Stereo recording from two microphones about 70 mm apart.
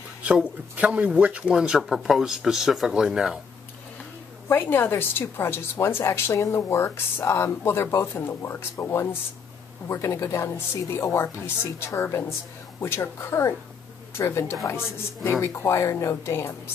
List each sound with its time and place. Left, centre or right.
0.2 s speech: centre
4.5 s speech: left